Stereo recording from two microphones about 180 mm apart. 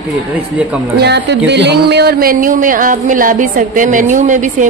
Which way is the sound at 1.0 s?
70° right (ahead or behind).